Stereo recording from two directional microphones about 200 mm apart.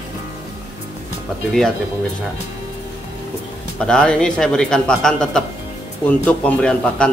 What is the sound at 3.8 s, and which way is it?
Speech, 5° left (ahead or behind).